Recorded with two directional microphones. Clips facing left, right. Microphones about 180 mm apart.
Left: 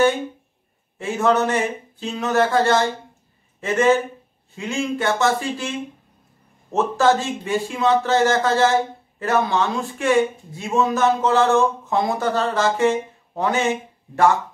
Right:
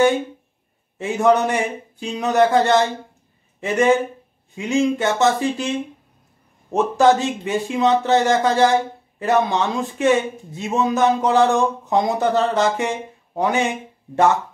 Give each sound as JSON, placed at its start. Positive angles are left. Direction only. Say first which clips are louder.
{"t": 0.9, "sound": "speech", "louder": "right 2 dB", "side_deg": -20}